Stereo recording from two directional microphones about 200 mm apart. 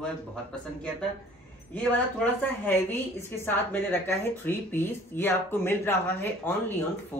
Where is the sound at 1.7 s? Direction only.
5° left (ahead or behind).